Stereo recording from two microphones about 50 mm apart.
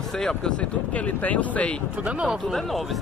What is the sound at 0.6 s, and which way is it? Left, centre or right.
Speech, left.